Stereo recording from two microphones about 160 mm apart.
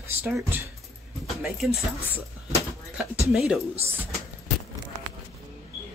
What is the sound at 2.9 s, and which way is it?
Speech, 5° right (ahead or behind).